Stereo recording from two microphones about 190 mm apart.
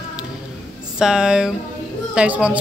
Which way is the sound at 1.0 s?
5° right (ahead or behind).